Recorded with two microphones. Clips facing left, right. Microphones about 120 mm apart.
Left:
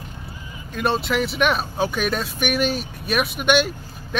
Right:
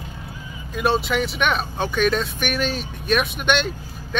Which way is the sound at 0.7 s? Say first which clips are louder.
Right 1 dB; centre (ahead or behind).